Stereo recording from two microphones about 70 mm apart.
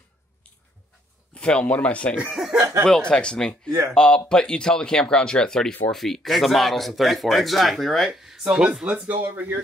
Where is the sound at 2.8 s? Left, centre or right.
Centre.